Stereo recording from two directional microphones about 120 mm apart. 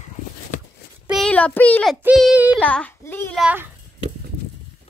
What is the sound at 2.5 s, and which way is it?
Child singing, 10° left (ahead or behind).